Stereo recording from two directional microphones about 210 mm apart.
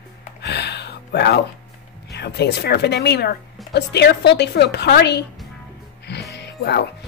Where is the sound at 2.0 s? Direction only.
50° left (ahead or behind).